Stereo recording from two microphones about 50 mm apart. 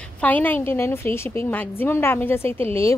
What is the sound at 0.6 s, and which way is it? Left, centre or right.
A woman's voice, left.